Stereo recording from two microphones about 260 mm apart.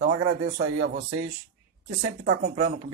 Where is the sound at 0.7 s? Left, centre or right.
Right.